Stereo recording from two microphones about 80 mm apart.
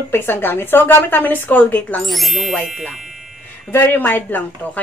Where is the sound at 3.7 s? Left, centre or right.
Left.